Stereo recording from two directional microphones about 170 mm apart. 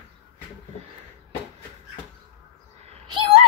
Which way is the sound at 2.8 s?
40° right (ahead or behind).